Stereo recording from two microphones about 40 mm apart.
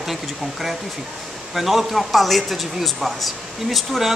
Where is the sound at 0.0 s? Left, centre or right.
Centre.